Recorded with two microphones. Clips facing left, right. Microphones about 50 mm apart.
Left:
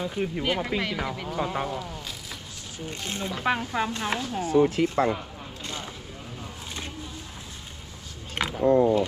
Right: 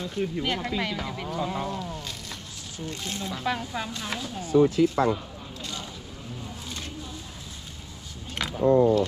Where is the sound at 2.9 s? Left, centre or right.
Left.